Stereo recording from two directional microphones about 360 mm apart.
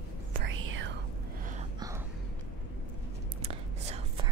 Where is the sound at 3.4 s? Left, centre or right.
Centre.